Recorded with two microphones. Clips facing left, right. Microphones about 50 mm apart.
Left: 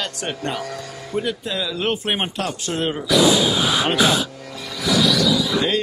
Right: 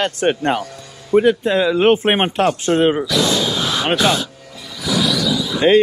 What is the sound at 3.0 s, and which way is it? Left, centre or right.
Gasp, centre.